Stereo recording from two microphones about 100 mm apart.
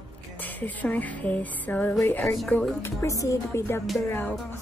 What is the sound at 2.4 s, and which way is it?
Music, 15° left (ahead or behind).